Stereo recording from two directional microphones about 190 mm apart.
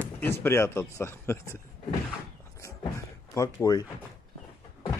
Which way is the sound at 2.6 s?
15° left (ahead or behind).